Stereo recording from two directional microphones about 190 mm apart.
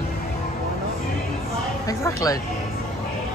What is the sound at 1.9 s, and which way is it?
Speech, 15° left (ahead or behind).